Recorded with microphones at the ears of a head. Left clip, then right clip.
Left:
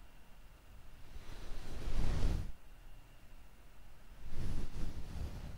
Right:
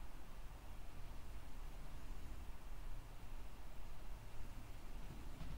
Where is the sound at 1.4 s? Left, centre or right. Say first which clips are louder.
Left 8 dB; left.